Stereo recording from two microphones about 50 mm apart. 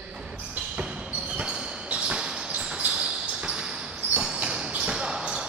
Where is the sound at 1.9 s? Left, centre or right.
Centre.